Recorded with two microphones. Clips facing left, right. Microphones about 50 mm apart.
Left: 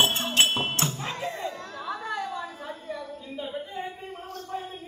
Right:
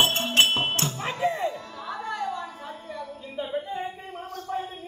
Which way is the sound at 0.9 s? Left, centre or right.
Centre.